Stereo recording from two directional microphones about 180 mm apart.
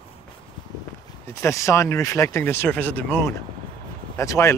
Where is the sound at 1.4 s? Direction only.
15° left (ahead or behind).